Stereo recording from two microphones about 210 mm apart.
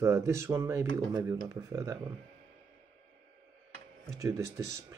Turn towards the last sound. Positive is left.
turn(degrees=-15)  # may be behind; listen again after turning